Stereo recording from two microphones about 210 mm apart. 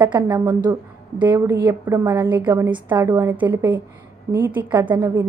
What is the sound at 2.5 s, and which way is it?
A woman's voice, 20° right (ahead or behind).